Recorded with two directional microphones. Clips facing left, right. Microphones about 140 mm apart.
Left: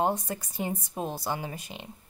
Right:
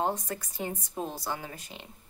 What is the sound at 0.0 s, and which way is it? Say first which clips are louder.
Speech: left 3 dB; 15° left (ahead or behind).